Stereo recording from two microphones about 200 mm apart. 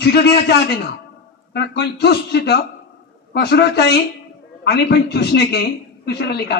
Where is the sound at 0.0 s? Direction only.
55° left (ahead or behind).